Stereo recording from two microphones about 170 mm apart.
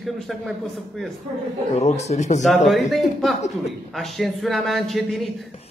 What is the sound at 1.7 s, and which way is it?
Speech, 40° left (ahead or behind).